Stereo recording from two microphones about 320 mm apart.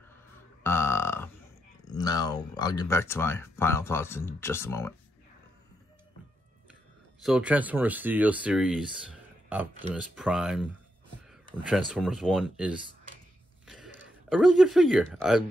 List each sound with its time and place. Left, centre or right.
0.7 s burping: centre
1.9 s speech: centre
7.2 s speech: centre